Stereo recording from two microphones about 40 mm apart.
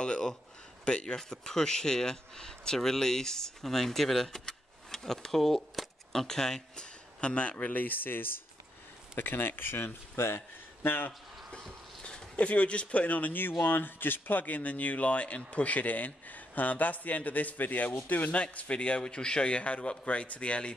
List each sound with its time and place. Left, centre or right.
0.0 s a sound: left
0.8 s speech: left
7.2 s speech: left
7.5 s speech: left
12.4 s speech: left